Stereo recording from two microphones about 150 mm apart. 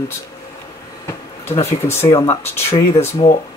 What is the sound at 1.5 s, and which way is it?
Speech, 15° left (ahead or behind).